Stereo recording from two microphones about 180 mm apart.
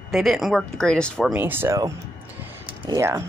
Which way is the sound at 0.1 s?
Centre (ahead or behind).